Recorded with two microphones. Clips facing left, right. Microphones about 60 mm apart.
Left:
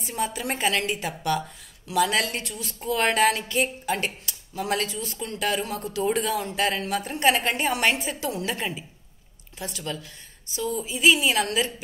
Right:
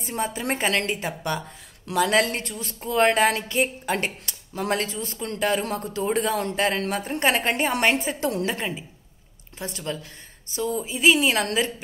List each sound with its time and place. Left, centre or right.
0.1 s a woman's voice: right
1.0 s a woman's voice: right
8.2 s a man's voice: right
9.6 s a woman's voice: right
10.5 s a woman's voice: right